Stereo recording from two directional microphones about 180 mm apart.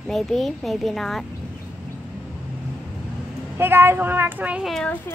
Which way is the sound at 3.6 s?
10° right (ahead or behind).